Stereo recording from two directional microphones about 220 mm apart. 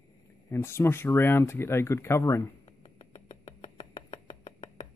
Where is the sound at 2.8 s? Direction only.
30° left (ahead or behind).